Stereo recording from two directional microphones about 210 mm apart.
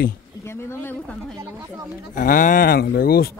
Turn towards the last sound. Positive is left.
turn(degrees=45)  # may be behind; listen again after turning